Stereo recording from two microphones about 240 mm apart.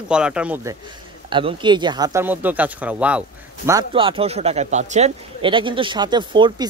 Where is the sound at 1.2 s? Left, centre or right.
Right.